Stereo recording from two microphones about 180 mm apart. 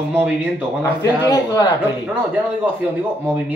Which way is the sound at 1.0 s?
20° left (ahead or behind).